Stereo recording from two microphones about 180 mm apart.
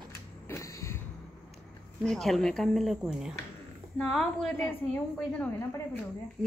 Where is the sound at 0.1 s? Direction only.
15° left (ahead or behind).